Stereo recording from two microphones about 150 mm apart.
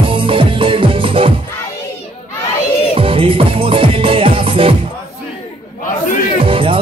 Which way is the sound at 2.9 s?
40° right (ahead or behind).